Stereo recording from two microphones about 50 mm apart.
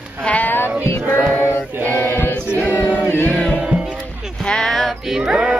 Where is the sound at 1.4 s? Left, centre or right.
Left.